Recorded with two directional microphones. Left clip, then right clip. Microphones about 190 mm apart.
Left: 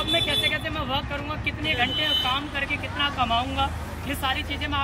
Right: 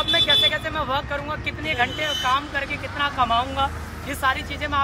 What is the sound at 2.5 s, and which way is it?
Speech, 15° right (ahead or behind).